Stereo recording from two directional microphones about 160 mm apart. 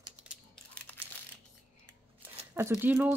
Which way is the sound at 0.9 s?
10° left (ahead or behind).